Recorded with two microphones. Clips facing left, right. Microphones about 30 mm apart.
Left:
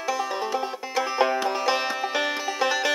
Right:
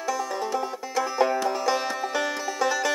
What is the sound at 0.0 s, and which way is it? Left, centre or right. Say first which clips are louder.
Music: left 1 dB; left.